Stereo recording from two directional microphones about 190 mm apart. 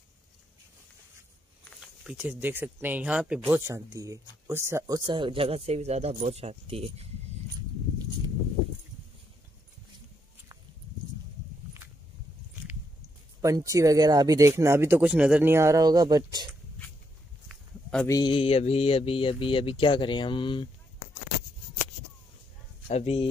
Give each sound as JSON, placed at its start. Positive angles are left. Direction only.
{"t": 1.8, "sound": "speech", "side_deg": -5}
{"t": 13.4, "sound": "speech", "side_deg": -15}
{"t": 17.5, "sound": "a sound", "side_deg": 0}
{"t": 18.0, "sound": "speech", "side_deg": 20}
{"t": 22.8, "sound": "speech", "side_deg": 30}